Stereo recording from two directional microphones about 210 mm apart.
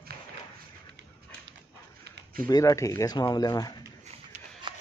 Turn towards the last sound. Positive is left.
turn(degrees=20)  # may be behind; listen again after turning